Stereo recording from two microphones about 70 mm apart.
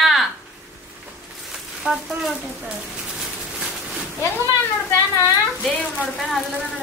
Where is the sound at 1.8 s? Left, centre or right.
Centre.